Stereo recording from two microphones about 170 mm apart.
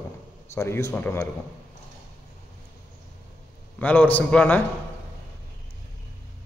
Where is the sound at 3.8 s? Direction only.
10° left (ahead or behind).